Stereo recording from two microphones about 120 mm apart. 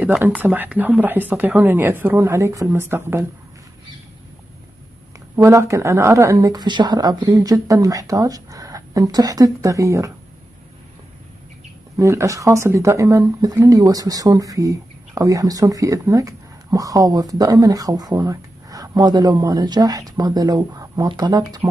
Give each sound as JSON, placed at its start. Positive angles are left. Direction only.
{"t": 0.2, "sound": "speech", "side_deg": -15}
{"t": 5.3, "sound": "speech", "side_deg": -25}
{"t": 12.0, "sound": "speech", "side_deg": -25}